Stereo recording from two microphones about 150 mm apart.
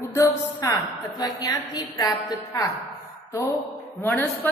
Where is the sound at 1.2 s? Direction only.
25° left (ahead or behind).